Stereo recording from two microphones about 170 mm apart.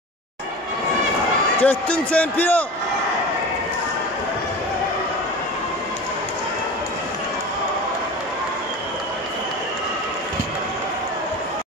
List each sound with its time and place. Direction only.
1.6 s speech: 10° left (ahead or behind)